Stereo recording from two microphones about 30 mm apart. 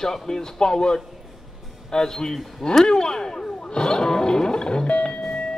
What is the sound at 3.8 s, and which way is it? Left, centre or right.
Music, left.